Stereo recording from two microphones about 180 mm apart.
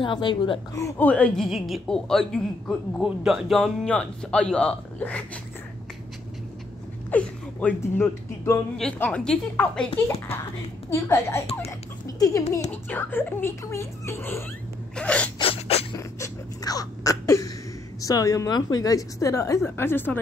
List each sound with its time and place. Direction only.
0.0 s a woman's voice: 25° left (ahead or behind); by 5.4 s 10° left (ahead or behind)
7.1 s a woman's voice: 10° left (ahead or behind)
10.9 s speech: 15° left (ahead or behind)
15.3 s a sound: 30° left (ahead or behind)
16.0 s a sound: 20° left (ahead or behind)
18.0 s speech: 20° left (ahead or behind)